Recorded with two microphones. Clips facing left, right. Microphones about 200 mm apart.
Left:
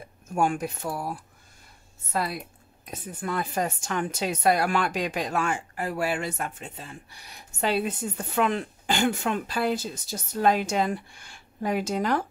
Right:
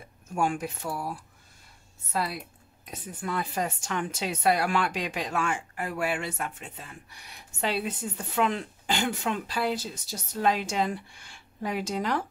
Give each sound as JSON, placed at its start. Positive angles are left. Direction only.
{"t": 0.3, "sound": "a woman's voice", "side_deg": 45}
{"t": 2.8, "sound": "a woman's voice", "side_deg": 45}